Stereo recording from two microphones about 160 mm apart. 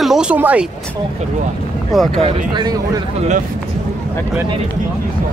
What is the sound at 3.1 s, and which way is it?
Speech, 45° right (ahead or behind).